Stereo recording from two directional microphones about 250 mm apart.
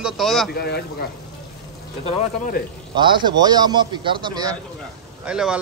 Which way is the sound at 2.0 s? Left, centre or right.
Left.